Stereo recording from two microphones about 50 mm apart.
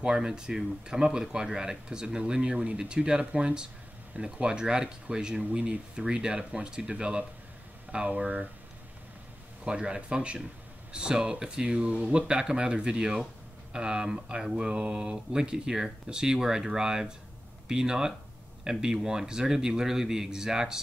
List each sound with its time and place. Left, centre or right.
0.0 s speech: centre
9.7 s speech: right